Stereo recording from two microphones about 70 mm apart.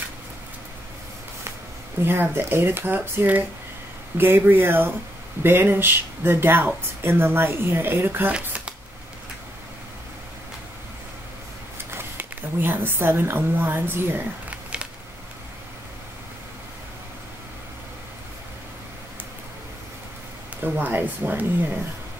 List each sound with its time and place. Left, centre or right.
2.0 s speech: right
8.3 s shuffling cards: centre
11.9 s speech: right
14.5 s a sound: centre
20.6 s speech: right